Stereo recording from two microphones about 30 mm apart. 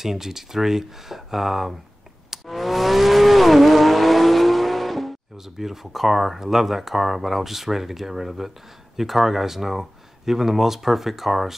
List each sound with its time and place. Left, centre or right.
0.0 s speech: centre
2.4 s vehicle: centre
5.4 s speech: centre